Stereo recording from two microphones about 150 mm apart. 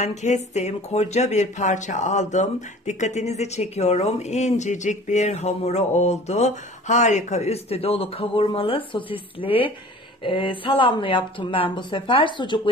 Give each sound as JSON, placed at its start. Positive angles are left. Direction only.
{"t": 0.0, "sound": "speech", "side_deg": 50}